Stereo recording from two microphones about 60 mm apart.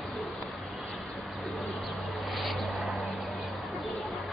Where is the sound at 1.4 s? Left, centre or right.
Centre.